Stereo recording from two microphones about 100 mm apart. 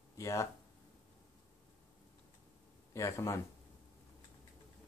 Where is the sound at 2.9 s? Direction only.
30° left (ahead or behind).